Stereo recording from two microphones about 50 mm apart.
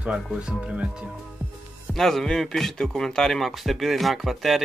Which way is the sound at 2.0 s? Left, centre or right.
Centre.